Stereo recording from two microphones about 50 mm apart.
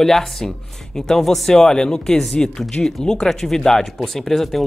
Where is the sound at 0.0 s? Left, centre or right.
Centre.